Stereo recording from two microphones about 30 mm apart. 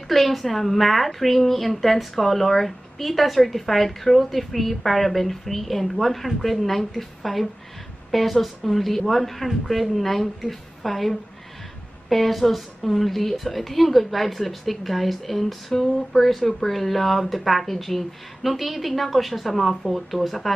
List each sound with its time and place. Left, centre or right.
0.1 s a woman's voice: centre
15.7 s a sound: centre
16.3 s a woman's voice: centre